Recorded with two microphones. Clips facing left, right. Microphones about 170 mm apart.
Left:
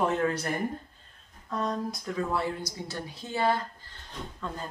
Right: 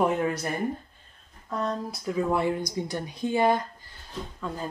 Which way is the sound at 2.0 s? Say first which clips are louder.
Right 7 dB; 15° right (ahead or behind).